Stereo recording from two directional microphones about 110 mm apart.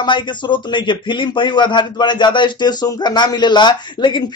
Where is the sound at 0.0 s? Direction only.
45° left (ahead or behind).